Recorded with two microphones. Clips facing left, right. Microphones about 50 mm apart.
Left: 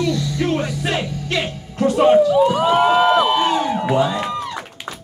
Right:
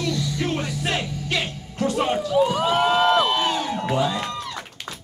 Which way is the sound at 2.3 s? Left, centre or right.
Centre.